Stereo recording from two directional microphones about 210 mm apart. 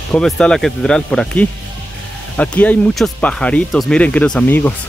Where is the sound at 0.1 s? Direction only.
5° left (ahead or behind).